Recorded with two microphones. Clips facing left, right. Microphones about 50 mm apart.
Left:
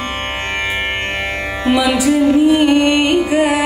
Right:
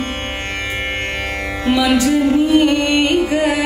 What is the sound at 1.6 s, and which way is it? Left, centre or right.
Music, left.